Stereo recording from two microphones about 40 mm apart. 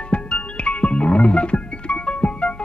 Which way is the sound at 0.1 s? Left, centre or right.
Left.